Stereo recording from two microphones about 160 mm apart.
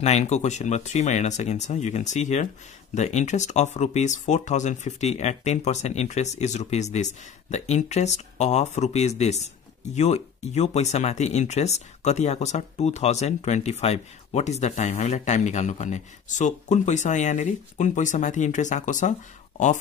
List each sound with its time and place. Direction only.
0.0 s speech: 45° left (ahead or behind)